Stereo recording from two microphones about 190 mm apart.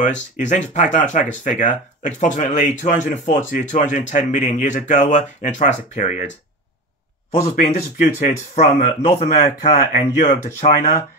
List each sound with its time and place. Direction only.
0.4 s speech: 40° left (ahead or behind)
7.2 s speech: 35° left (ahead or behind)